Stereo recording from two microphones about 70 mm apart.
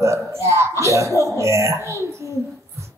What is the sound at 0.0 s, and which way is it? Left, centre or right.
Speech, right.